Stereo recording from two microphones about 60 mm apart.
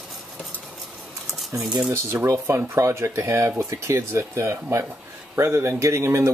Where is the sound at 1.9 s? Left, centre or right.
Right.